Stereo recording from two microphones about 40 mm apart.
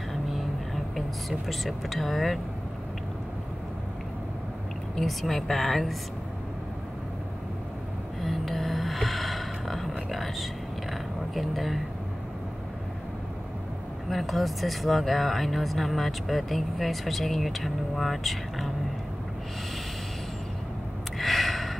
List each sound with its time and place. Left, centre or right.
0.1 s vehicle: centre
1.5 s speech: centre
5.0 s speech: centre
8.2 s gasp: centre
14.0 s speech: centre
21.2 s gasp: centre